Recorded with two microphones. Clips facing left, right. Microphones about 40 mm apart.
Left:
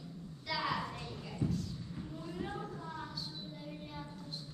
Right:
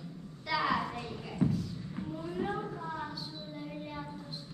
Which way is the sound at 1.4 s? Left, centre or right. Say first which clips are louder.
Right 6 dB; right.